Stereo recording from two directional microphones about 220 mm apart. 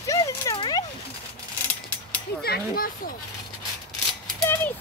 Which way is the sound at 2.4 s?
45° left (ahead or behind).